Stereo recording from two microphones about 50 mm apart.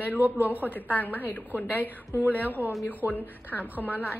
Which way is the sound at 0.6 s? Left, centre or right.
Left.